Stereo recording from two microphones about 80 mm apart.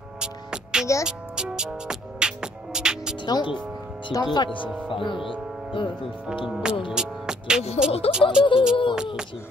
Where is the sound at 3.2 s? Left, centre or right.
Left.